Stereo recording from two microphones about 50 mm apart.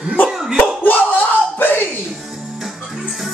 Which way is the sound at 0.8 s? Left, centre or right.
Left.